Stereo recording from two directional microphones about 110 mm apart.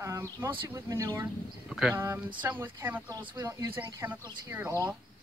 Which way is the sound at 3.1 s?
35° right (ahead or behind).